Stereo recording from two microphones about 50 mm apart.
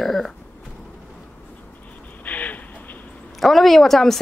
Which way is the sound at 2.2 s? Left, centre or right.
Left.